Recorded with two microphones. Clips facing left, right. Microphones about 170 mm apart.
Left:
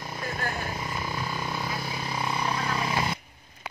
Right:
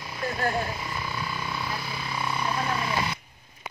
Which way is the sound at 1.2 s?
40° left (ahead or behind).